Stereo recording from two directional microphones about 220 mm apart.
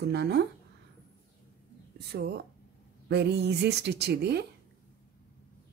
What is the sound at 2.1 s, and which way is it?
Speech, 50° right (ahead or behind).